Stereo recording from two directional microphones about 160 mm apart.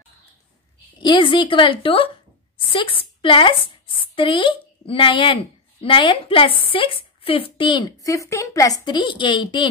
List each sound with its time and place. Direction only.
1.0 s a woman's voice: 30° left (ahead or behind)